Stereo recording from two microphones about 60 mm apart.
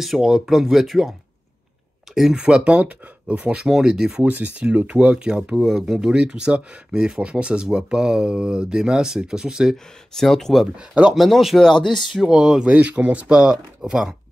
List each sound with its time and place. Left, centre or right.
0.0 s speech: centre
2.3 s speech: centre
3.6 s speech: centre
4.2 s speech: right; by 5.9 s centre
5.9 s speech: centre
10.1 s speech: centre
12.1 s speech: centre